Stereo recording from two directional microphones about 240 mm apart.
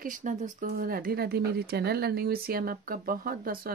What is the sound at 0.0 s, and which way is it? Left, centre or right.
Speech, right.